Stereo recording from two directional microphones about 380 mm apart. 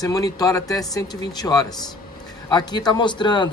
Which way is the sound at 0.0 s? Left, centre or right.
Centre.